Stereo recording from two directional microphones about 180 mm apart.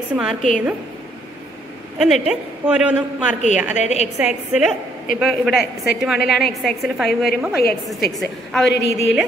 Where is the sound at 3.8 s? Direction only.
40° left (ahead or behind).